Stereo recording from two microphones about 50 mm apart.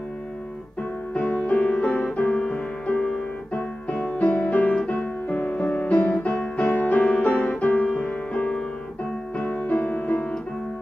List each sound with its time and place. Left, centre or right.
1.1 s music: left